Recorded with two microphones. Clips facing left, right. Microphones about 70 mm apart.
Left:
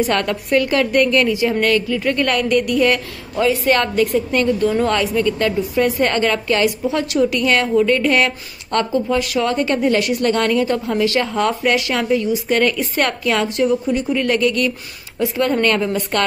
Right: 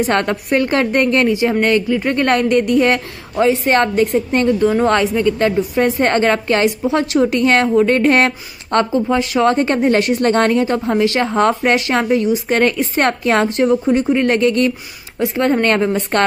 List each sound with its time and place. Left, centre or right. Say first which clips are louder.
0.0 s a woman's voice: right 2 dB; right
8.7 s a woman's voice: right 3 dB; right